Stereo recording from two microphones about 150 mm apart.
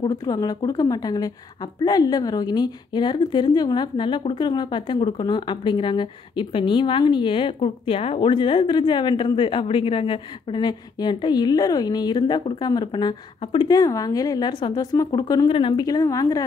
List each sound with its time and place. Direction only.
0.0 s a woman's voice: 25° left (ahead or behind)